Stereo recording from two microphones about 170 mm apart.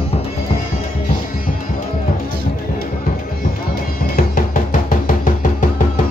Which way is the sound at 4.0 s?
60° left (ahead or behind).